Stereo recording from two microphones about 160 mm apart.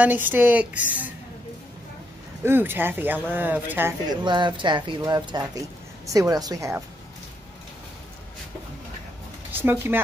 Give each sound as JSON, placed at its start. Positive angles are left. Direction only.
{"t": 0.0, "sound": "speech", "side_deg": -10}
{"t": 2.4, "sound": "speech", "side_deg": -15}
{"t": 4.2, "sound": "speech", "side_deg": -30}
{"t": 9.5, "sound": "speech", "side_deg": -15}